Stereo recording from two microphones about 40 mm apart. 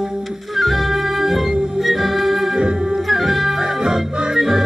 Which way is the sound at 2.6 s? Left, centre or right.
Right.